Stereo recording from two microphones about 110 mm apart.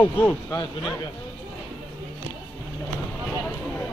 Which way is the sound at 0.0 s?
15° left (ahead or behind).